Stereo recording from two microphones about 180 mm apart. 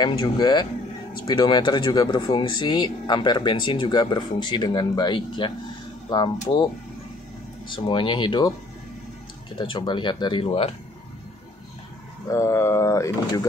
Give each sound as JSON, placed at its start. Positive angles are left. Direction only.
{"t": 0.0, "sound": "speech", "side_deg": 25}
{"t": 7.7, "sound": "speech", "side_deg": 25}
{"t": 9.6, "sound": "speech", "side_deg": 25}
{"t": 12.3, "sound": "speech", "side_deg": 15}